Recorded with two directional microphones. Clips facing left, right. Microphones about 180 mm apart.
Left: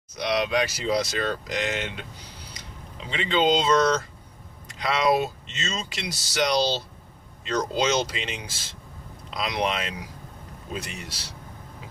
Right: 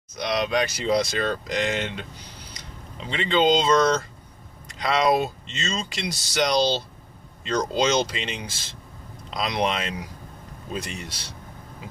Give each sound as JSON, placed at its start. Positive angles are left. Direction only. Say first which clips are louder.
{"t": 0.1, "sound": "speech", "louder": "even", "side_deg": 5}
{"t": 3.1, "sound": "speech", "louder": "right 2 dB", "side_deg": 5}